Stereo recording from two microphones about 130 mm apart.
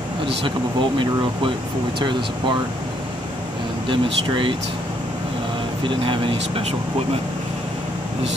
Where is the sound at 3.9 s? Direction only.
40° right (ahead or behind).